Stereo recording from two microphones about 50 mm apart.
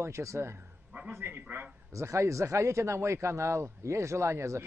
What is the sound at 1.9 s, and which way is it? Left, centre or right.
A man's voice, right.